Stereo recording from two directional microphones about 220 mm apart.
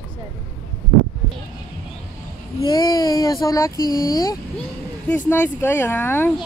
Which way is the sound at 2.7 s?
15° left (ahead or behind).